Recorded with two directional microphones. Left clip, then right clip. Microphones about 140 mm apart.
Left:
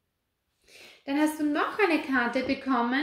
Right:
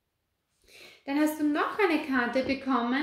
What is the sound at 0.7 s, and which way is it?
A woman's voice, 30° right (ahead or behind).